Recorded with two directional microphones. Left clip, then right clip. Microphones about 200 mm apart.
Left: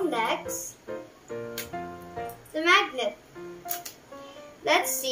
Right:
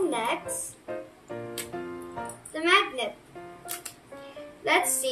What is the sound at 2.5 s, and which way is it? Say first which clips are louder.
Music: left 1 dB; 5° right (ahead or behind).